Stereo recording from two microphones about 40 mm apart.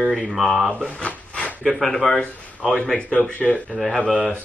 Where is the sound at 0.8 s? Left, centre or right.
Left.